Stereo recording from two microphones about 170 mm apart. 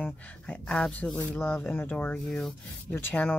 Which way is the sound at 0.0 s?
10° left (ahead or behind).